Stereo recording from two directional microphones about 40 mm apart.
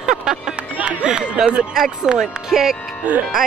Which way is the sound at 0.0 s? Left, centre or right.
Centre.